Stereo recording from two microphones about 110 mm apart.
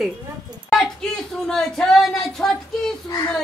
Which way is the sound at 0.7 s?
5° left (ahead or behind).